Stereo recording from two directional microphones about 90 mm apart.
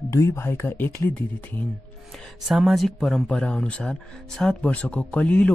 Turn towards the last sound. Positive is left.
turn(degrees=15)  # may be behind; listen again after turning